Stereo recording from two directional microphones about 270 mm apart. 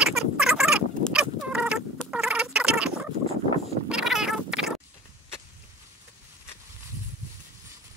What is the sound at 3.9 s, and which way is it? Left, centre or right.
Cat, centre.